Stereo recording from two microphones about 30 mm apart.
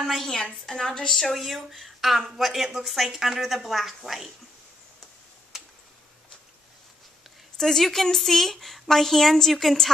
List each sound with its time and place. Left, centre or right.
0.0 s a woman's voice: centre
0.4 s a woman's voice: left
1.1 s a woman's voice: centre
7.5 s a woman's voice: centre